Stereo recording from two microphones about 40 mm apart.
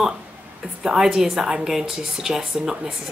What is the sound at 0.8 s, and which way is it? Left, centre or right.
A woman's voice, centre.